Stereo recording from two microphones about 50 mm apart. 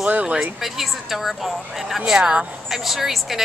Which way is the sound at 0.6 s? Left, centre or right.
Centre.